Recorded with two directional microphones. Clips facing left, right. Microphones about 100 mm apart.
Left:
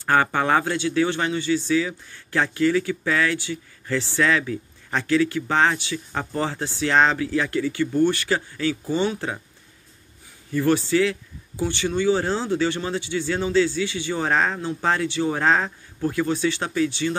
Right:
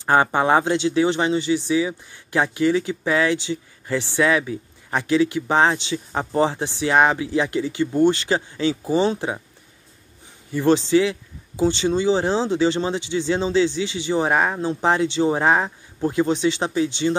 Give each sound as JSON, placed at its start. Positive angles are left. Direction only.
{"t": 0.0, "sound": "speech", "side_deg": -20}
{"t": 10.5, "sound": "speech", "side_deg": -20}